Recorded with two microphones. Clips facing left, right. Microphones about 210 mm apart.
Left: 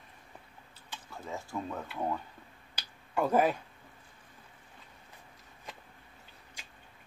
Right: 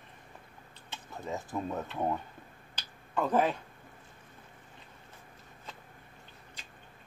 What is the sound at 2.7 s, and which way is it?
Finger snapping, 10° left (ahead or behind).